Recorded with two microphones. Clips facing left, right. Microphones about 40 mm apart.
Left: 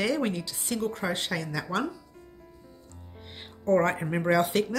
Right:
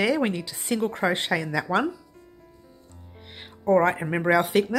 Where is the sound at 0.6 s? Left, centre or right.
Right.